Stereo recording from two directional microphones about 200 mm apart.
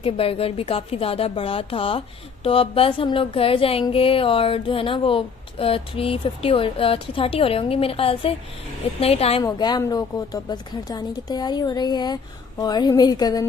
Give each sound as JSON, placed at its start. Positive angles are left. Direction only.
{"t": 0.0, "sound": "a woman's voice", "side_deg": 30}
{"t": 9.4, "sound": "a woman's voice", "side_deg": 20}